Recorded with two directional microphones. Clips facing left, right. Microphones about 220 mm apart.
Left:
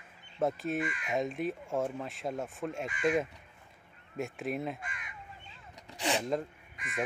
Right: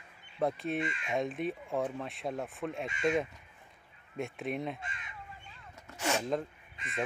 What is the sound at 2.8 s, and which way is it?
Speech, 25° right (ahead or behind).